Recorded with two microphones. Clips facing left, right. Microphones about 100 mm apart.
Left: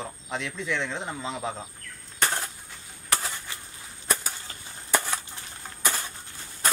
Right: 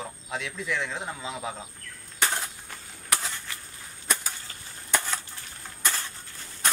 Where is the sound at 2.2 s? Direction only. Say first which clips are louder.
Left 1 dB; centre (ahead or behind).